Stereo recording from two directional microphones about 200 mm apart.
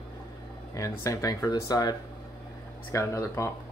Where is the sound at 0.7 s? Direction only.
15° left (ahead or behind).